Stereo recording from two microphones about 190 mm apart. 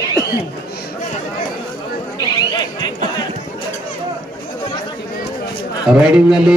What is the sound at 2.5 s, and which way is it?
Speech, 20° left (ahead or behind).